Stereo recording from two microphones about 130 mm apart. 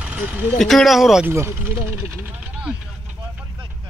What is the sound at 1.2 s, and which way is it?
Speech, 15° right (ahead or behind).